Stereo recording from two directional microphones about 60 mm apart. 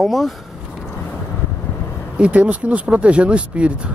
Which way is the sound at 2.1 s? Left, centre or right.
Centre.